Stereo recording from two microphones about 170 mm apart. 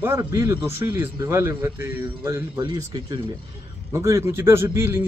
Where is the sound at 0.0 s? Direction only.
15° right (ahead or behind).